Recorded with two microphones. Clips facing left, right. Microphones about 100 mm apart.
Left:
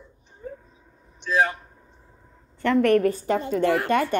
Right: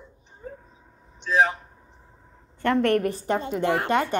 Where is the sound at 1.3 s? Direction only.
25° right (ahead or behind).